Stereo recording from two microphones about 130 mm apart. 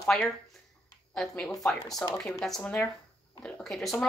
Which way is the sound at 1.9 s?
25° left (ahead or behind).